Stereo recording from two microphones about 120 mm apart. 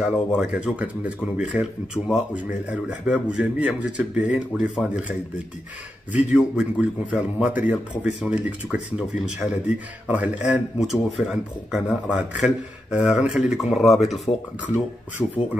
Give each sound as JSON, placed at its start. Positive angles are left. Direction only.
{"t": 0.0, "sound": "speech", "side_deg": -5}
{"t": 6.1, "sound": "a man's voice", "side_deg": -10}
{"t": 15.2, "sound": "speech", "side_deg": 35}